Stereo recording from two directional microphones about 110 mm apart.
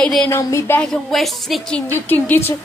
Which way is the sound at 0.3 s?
25° left (ahead or behind).